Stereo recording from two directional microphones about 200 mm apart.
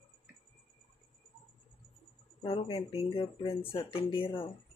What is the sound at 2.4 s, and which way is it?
Speech, 30° left (ahead or behind).